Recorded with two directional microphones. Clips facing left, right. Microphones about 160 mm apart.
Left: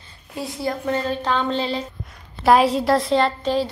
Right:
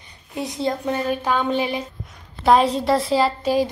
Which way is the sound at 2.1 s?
Centre (ahead or behind).